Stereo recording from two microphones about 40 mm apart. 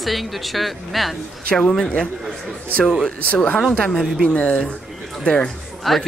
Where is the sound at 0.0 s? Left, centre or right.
Centre.